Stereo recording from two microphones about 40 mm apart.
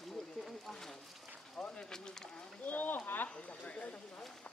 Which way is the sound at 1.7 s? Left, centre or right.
Centre.